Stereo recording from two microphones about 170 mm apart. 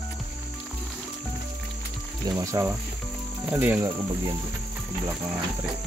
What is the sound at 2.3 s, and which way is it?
Cricket, 20° right (ahead or behind).